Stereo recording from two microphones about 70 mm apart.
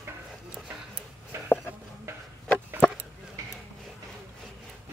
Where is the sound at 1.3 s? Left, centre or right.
Right.